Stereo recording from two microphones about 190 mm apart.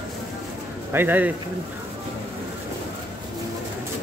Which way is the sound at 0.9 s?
10° right (ahead or behind).